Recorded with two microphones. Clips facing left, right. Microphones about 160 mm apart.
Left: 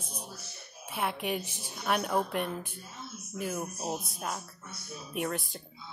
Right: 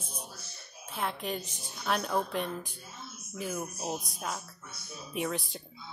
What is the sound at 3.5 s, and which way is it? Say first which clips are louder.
A woman's voice: right 1 dB; 10° left (ahead or behind).